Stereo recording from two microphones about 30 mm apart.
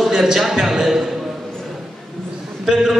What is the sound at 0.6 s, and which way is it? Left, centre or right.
Speech, centre.